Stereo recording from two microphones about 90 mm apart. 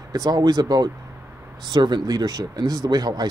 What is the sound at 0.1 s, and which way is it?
Speech, 45° right (ahead or behind).